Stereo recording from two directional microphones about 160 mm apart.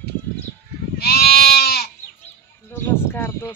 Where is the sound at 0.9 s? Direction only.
80° left.